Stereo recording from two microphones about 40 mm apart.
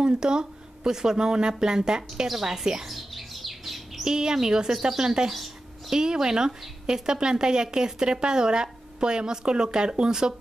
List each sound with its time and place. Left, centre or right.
0.0 s speech: centre
2.9 s bird: centre
4.1 s a woman's voice: centre